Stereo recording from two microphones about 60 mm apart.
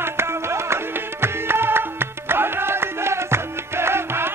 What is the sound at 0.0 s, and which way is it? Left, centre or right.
Music, right.